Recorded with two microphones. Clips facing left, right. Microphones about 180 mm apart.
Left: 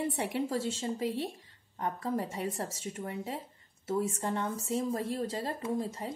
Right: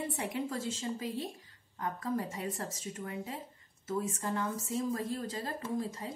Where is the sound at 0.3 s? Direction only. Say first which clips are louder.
Left 4 dB; 30° left (ahead or behind).